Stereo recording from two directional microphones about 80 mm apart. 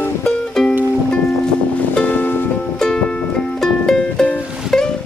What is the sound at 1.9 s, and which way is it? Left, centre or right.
Music, left.